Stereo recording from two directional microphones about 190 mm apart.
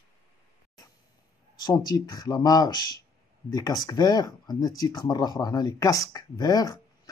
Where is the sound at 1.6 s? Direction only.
20° left (ahead or behind).